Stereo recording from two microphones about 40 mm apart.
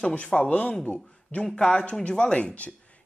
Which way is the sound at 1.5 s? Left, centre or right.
Left.